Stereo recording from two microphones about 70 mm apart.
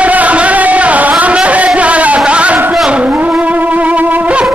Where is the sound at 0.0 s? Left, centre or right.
Centre.